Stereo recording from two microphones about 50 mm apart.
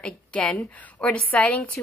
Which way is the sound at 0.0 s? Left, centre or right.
Centre.